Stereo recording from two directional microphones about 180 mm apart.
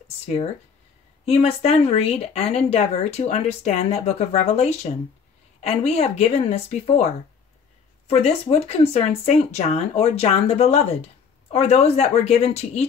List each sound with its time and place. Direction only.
0.2 s speech: 35° left (ahead or behind)
8.1 s speech: 35° left (ahead or behind)